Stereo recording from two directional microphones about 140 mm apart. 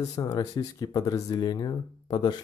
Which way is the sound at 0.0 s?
25° left (ahead or behind).